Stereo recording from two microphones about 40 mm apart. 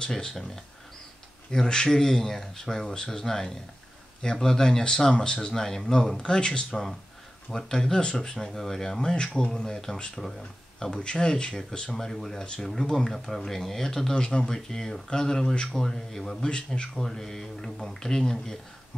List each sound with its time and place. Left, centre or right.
0.1 s speech: centre
1.5 s speech: centre
8.4 s speech: centre
10.9 s speech: left
16.4 s speech: left
16.9 s speech: centre